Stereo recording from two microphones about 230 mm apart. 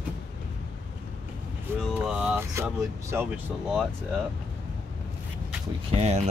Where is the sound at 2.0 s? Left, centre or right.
Centre.